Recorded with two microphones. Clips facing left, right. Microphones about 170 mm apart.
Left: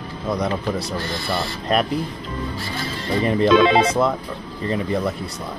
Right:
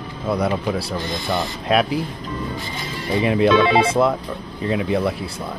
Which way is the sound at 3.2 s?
5° right (ahead or behind).